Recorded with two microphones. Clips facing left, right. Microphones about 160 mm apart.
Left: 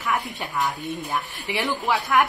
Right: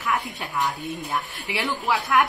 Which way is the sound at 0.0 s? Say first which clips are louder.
Even; centre (ahead or behind).